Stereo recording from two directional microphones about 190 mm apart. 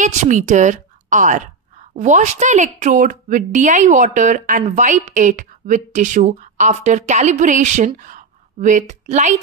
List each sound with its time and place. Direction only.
0.0 s a woman's voice: 40° right (ahead or behind)